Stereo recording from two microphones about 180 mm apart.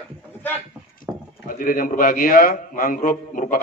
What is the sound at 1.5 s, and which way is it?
A man's voice, 50° left (ahead or behind).